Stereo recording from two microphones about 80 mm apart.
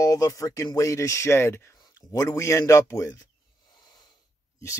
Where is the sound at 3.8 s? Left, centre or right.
Left.